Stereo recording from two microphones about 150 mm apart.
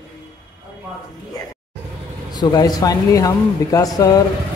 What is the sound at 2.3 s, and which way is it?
Speech, 30° left (ahead or behind).